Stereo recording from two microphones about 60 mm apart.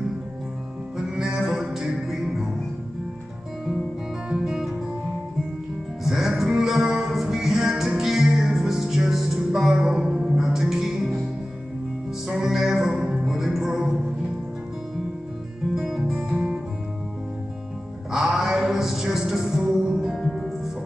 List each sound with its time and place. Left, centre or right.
0.9 s music: centre
4.3 s music: centre
6.0 s music: centre
12.3 s music: centre
15.7 s music: centre
16.1 s music: centre
18.1 s music: centre